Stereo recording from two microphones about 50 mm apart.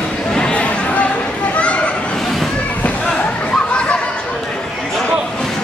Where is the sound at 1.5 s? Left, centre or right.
Left.